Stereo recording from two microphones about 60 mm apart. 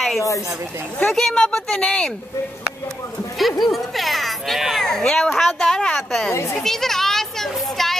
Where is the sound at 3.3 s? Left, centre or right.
Centre.